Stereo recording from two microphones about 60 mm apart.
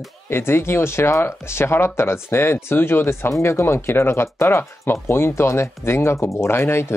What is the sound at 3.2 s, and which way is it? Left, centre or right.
Speech, left.